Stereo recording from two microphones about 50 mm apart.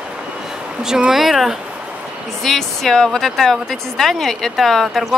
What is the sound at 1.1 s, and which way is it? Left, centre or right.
A woman's voice, centre.